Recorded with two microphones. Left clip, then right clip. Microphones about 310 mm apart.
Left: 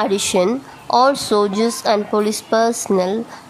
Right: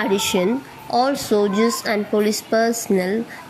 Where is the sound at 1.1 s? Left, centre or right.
Left.